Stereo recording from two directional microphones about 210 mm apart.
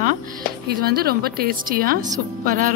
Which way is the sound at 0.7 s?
45° right (ahead or behind).